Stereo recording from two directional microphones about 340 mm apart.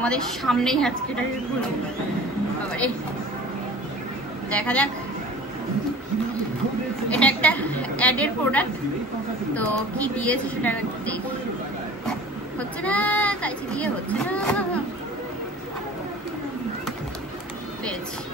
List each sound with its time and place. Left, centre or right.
0.0 s speech: centre
4.5 s speech: centre
7.1 s speech: centre
12.5 s speech: centre